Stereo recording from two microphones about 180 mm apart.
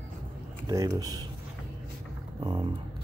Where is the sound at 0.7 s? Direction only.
20° right (ahead or behind).